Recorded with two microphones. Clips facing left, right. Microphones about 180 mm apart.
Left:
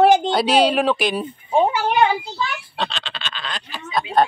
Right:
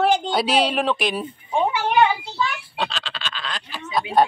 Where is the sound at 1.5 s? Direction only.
40° left (ahead or behind).